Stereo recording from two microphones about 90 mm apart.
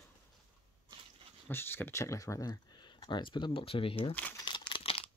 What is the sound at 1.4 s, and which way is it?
Speech, 25° left (ahead or behind).